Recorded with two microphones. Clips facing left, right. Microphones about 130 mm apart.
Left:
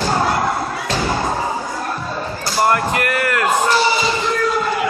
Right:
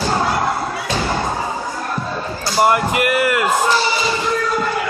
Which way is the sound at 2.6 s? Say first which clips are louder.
Right 2 dB; 10° right (ahead or behind).